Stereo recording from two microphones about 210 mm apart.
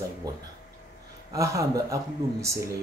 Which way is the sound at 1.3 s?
15° right (ahead or behind).